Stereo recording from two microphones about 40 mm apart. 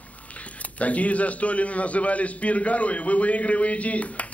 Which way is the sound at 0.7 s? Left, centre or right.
Left.